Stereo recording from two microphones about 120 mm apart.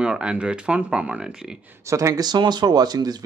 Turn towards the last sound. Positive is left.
turn(degrees=-35)  # may be behind; listen again after turning